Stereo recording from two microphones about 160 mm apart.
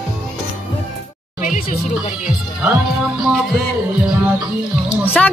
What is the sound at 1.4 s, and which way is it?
Music, 60° left (ahead or behind).